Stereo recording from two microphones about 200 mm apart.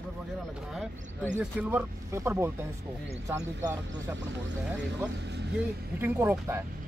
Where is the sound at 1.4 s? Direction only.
10° right (ahead or behind).